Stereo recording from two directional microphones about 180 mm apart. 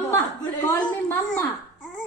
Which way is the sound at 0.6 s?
10° left (ahead or behind).